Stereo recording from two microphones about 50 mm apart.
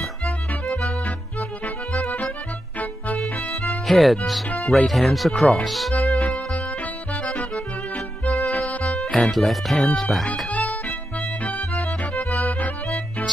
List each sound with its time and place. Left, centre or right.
2.0 s music: left
3.6 s music: centre
4.6 s speech: centre
6.1 s music: left
8.8 s music: centre
9.1 s speech: centre
10.5 s music: left